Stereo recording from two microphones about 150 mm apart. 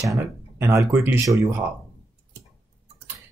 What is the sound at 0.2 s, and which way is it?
Speech, 15° right (ahead or behind).